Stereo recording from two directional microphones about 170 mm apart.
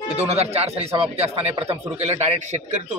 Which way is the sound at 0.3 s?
35° right (ahead or behind).